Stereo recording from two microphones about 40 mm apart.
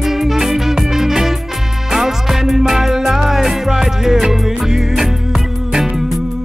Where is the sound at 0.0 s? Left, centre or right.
Centre.